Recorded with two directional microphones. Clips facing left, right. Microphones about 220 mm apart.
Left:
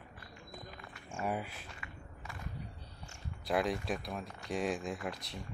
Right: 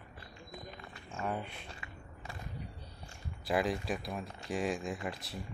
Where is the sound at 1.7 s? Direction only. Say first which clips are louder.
Right 1 dB; 30° right (ahead or behind).